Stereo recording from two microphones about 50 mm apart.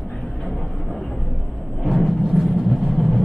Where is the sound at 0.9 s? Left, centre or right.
Centre.